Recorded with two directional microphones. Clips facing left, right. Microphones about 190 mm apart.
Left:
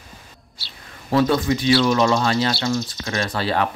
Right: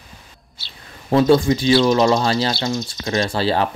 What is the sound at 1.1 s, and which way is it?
Speech, 30° right (ahead or behind).